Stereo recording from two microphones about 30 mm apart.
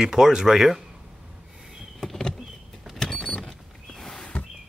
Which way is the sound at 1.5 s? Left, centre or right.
Centre.